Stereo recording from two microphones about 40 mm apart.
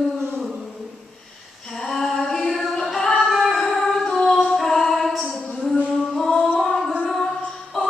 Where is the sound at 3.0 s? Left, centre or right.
Centre.